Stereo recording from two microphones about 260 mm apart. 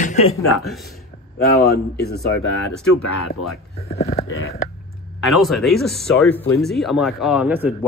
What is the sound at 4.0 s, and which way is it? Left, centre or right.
Speech, left.